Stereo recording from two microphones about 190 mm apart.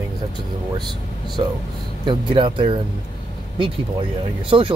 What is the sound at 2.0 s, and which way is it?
Speech, 25° right (ahead or behind).